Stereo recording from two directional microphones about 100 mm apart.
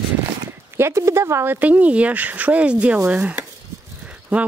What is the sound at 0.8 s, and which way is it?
Speech, 30° right (ahead or behind).